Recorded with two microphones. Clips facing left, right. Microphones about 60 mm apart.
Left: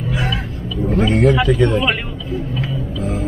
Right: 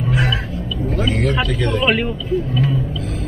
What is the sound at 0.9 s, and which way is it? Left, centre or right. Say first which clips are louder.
Vehicle: left 6 dB; left.